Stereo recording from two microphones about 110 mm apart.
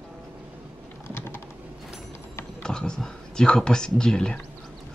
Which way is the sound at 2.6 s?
5° left (ahead or behind).